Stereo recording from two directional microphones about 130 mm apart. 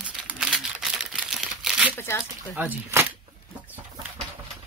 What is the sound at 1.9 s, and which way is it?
Speech, 20° left (ahead or behind).